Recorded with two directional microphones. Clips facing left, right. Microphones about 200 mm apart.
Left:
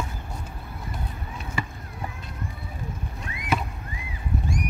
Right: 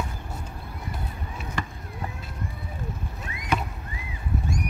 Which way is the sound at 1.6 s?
5° left (ahead or behind).